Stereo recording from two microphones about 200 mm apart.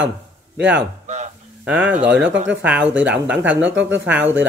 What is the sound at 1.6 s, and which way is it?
Speech, 5° right (ahead or behind).